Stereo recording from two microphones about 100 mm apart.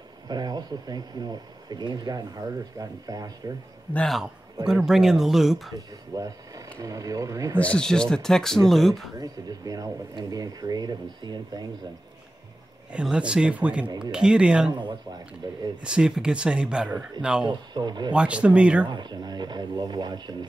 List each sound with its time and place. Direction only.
0.3 s speech: 45° right (ahead or behind)
3.9 s a man's voice: 5° left (ahead or behind)
4.8 s speech: 5° right (ahead or behind)
5.8 s speech: 35° right (ahead or behind)
7.5 s speech: 10° left (ahead or behind)
9.2 s speech: 40° right (ahead or behind)
12.9 s speech: 10° right (ahead or behind)
13.8 s speech: 50° right (ahead or behind)
14.1 s speech: 10° right (ahead or behind)
15.4 s speech: 40° right (ahead or behind)
15.8 s speech: 10° right (ahead or behind)
17.5 s speech: 45° right (ahead or behind)
18.1 s speech: 10° right (ahead or behind)
18.9 s speech: 50° right (ahead or behind)